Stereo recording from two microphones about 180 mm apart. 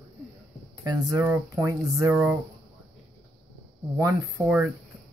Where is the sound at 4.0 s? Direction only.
10° right (ahead or behind).